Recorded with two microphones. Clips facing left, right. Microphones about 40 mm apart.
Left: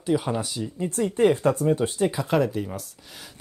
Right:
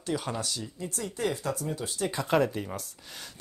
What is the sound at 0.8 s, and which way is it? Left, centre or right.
Speech, left.